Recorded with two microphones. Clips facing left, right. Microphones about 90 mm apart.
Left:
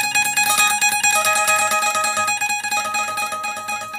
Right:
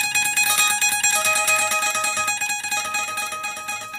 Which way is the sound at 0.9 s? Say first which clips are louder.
Left 5 dB; 60° left (ahead or behind).